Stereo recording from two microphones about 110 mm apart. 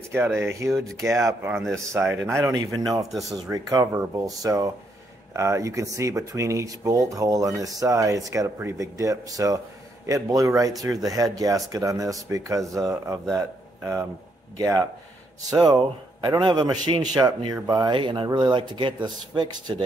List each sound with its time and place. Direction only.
0.1 s speech: 20° right (ahead or behind)
1.6 s speech: 5° left (ahead or behind)
2.2 s a man's voice: 25° right (ahead or behind)
3.1 s speech: centre (ahead or behind)
3.3 s a man's voice: 35° right (ahead or behind)